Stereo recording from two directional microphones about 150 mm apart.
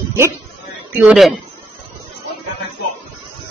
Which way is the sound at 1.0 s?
Centre (ahead or behind).